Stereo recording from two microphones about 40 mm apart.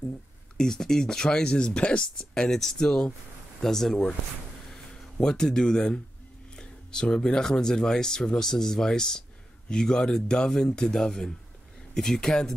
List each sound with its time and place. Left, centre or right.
0.6 s speech: centre
5.2 s speech: centre